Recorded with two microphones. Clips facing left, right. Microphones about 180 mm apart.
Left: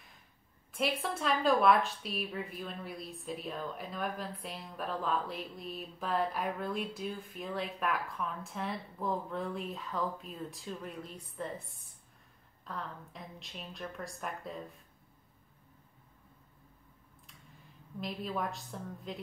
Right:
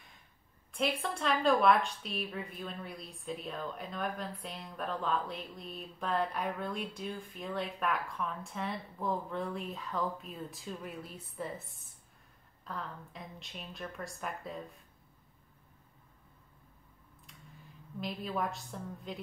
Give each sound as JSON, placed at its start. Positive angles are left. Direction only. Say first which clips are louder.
{"t": 0.7, "sound": "a woman's voice", "louder": "even", "side_deg": 0}
{"t": 12.6, "sound": "a woman's voice", "louder": "even", "side_deg": 0}
{"t": 18.0, "sound": "a woman's voice", "louder": "right 1 dB", "side_deg": 0}